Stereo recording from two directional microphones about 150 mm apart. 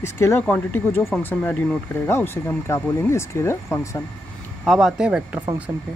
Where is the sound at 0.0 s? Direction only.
15° left (ahead or behind).